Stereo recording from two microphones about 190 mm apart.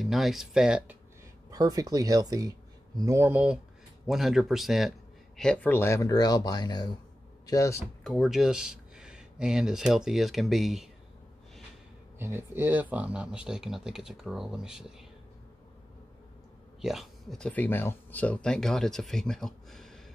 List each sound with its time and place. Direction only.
0.0 s speech: centre (ahead or behind)
1.5 s speech: 20° right (ahead or behind); by 7.8 s 15° left (ahead or behind)
8.0 s speech: centre (ahead or behind)
12.2 s speech: 10° right (ahead or behind)
16.8 s speech: centre (ahead or behind)